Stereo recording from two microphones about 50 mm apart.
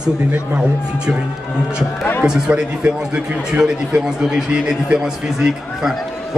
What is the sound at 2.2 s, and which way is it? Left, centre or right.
A man's voice, centre.